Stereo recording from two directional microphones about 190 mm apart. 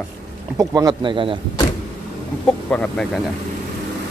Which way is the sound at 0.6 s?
20° right (ahead or behind).